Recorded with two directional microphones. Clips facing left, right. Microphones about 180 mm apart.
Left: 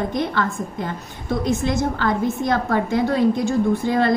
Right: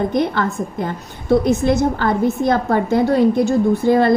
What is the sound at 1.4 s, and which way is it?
A woman's voice, 55° right (ahead or behind).